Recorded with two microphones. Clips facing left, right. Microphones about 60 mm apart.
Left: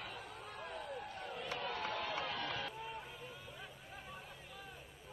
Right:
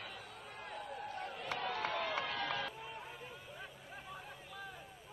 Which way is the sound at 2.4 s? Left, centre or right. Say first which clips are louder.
Right 3 dB; right.